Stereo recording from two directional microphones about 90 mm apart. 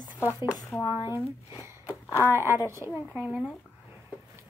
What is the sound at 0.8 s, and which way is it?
Speech, 25° right (ahead or behind).